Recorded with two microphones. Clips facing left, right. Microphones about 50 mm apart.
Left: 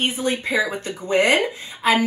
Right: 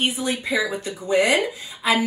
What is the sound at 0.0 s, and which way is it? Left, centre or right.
Speech, left.